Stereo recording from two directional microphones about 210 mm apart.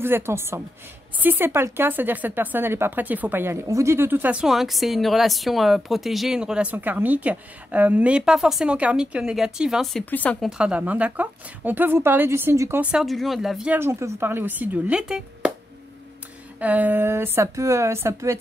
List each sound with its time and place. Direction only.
0.0 s a woman's voice: 10° right (ahead or behind); by 10.5 s 5° left (ahead or behind)
10.6 s a woman's voice: 5° right (ahead or behind)
12.9 s a woman's voice: centre (ahead or behind)
16.5 s a woman's voice: 5° right (ahead or behind)